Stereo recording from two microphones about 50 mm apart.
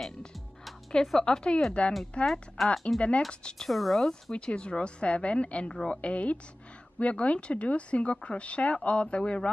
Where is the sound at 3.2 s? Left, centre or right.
Centre.